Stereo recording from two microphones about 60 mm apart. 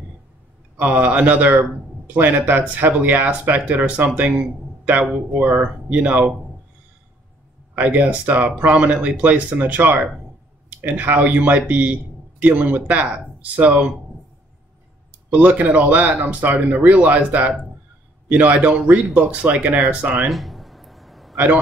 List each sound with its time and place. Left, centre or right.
0.7 s speech: right
7.7 s speech: right
15.3 s speech: right
20.2 s a sound: centre